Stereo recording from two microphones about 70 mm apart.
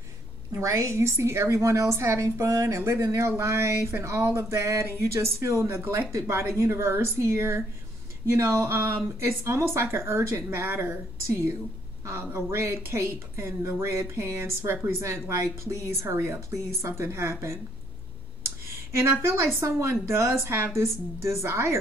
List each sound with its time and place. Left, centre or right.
0.5 s a woman's voice: right
18.7 s speech: right